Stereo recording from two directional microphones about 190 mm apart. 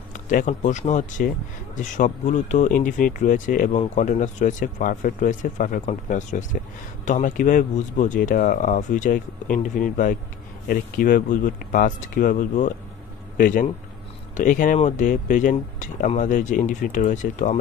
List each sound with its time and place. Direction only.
0.1 s speech: 40° left (ahead or behind)